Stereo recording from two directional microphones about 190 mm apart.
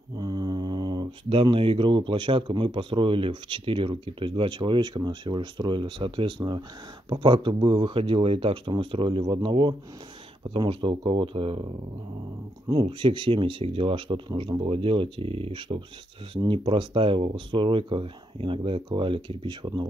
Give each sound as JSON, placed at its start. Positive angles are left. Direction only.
{"t": 0.2, "sound": "speech", "side_deg": -20}
{"t": 12.6, "sound": "speech", "side_deg": -25}